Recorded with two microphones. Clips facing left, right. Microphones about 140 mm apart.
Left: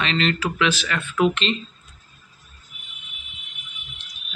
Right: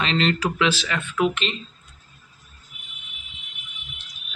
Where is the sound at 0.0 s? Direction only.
30° right (ahead or behind).